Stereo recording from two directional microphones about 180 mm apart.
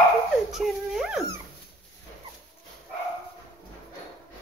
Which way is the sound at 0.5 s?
Centre (ahead or behind).